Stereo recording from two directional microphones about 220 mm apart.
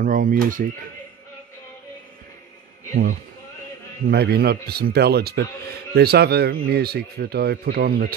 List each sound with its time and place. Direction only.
0.0 s speech: 40° right (ahead or behind)
4.1 s speech: 45° right (ahead or behind)